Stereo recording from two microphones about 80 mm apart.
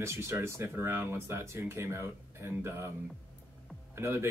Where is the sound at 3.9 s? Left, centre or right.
Right.